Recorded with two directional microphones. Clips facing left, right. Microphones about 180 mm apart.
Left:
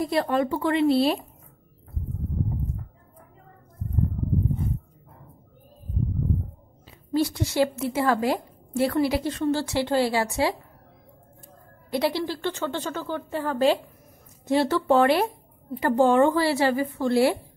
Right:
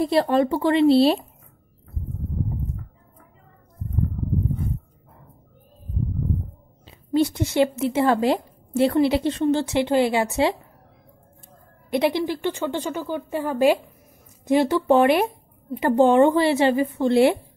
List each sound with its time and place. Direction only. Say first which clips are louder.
0.0 s speech: right 4 dB; 30° right (ahead or behind)
6.9 s speech: right 4 dB; 20° right (ahead or behind)
11.9 s a woman's voice: right 4 dB; 20° right (ahead or behind)